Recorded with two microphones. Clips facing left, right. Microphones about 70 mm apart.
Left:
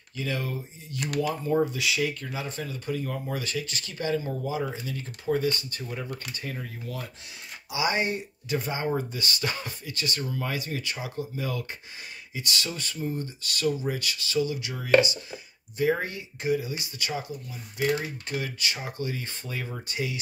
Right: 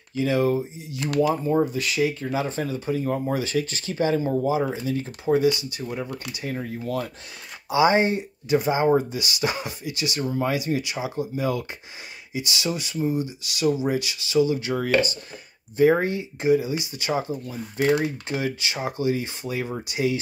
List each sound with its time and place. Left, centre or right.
0.1 s speech: right; by 2.0 s centre
2.0 s speech: centre
2.2 s speech: right
4.1 s speech: right
4.6 s speech: right
6.4 s speech: right
7.7 s speech: right
10.2 s speech: right
10.5 s speech: centre
14.8 s speech: right
15.8 s speech: right
17.1 s speech: right